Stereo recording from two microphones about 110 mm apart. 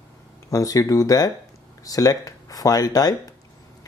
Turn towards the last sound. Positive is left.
turn(degrees=35)  # may be behind; listen again after turning